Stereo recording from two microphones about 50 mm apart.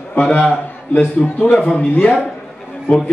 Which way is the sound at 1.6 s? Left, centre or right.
Centre.